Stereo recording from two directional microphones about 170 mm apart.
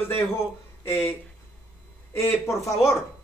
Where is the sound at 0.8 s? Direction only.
15° left (ahead or behind).